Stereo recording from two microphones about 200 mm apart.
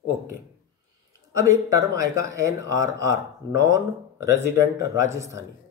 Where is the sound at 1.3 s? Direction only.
15° right (ahead or behind).